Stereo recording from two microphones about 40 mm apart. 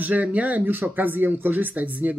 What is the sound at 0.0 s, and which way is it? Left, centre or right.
Speech, right.